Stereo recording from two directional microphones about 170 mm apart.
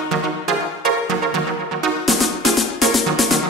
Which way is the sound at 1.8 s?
Centre (ahead or behind).